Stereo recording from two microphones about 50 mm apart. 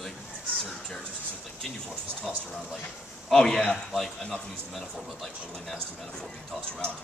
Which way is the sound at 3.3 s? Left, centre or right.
Centre.